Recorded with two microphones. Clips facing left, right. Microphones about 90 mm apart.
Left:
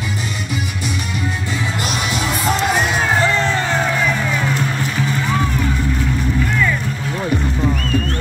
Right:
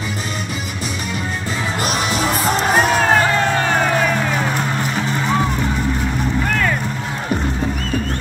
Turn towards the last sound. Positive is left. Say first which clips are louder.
# even
turn(degrees=-60)  # may be behind; listen again after turning